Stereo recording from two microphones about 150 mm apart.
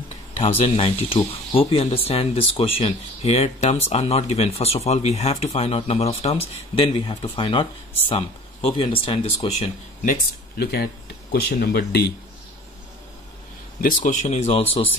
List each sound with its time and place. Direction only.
0.4 s speech: 40° left (ahead or behind)
10.6 s speech: 90° left
13.7 s speech: 65° left (ahead or behind); by 14.9 s 40° left (ahead or behind)